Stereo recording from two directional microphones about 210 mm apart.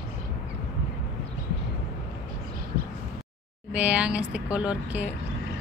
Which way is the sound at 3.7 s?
5° right (ahead or behind).